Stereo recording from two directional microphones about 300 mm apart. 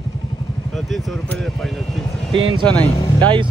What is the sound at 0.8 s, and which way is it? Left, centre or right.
Speech, centre.